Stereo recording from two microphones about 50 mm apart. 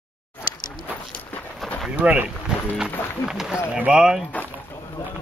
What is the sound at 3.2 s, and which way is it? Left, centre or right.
Speech, centre.